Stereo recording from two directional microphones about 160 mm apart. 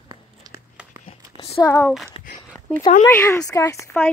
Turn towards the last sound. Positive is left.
turn(degrees=15)  # may be behind; listen again after turning